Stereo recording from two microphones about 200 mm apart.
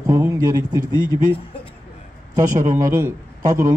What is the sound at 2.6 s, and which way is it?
Speech, 15° right (ahead or behind).